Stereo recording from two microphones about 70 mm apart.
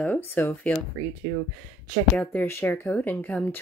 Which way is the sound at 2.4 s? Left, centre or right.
Left.